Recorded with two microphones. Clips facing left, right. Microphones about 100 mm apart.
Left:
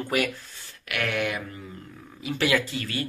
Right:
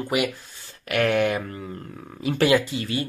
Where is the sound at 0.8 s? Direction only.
35° right (ahead or behind).